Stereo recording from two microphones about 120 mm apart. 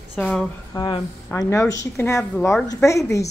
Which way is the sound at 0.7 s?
40° left (ahead or behind).